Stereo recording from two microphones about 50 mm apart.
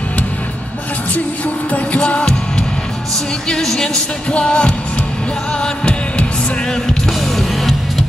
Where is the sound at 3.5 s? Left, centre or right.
Centre.